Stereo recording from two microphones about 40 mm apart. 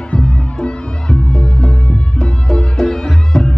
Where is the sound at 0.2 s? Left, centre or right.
Left.